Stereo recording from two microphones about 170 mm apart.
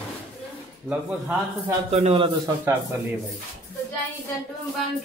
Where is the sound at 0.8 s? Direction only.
5° right (ahead or behind).